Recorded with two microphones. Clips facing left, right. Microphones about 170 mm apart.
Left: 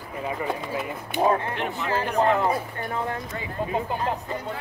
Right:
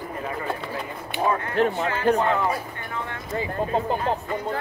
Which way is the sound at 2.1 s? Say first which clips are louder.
Left 1 dB; 35° left (ahead or behind).